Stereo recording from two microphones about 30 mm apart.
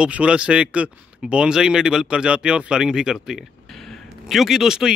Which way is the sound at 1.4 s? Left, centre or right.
Right.